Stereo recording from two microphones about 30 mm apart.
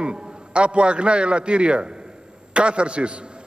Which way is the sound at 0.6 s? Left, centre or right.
Right.